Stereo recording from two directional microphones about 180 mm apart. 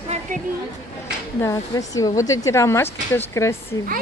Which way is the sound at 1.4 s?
20° left (ahead or behind).